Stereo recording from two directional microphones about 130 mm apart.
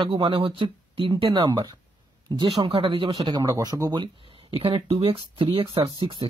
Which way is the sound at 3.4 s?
30° right (ahead or behind).